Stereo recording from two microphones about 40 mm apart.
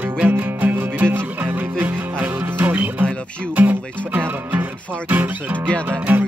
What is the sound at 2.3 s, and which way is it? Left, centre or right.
Music, right.